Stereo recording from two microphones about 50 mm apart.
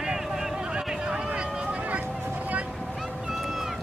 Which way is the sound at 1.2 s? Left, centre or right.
Right.